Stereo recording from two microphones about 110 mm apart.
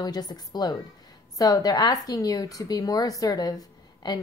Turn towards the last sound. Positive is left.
turn(degrees=40)  # may be behind; listen again after turning